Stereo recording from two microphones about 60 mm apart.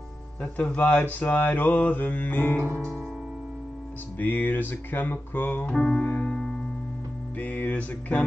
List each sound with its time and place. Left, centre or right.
0.4 s mantra: left
4.2 s music: left
5.7 s music: centre
7.3 s mantra: left